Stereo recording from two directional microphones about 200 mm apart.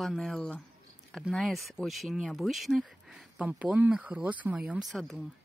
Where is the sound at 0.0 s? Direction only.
Centre (ahead or behind).